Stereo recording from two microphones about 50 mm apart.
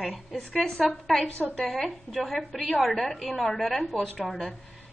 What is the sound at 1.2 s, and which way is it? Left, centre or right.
Speech, left.